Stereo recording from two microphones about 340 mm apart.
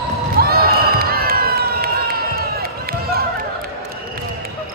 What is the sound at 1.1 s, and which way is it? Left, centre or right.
Run, right.